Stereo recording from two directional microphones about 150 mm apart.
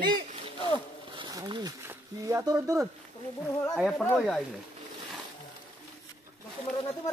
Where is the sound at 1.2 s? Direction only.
30° right (ahead or behind).